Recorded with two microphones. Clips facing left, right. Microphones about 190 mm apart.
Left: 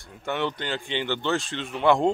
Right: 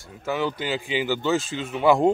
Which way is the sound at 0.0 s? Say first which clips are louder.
Right 2 dB; centre (ahead or behind).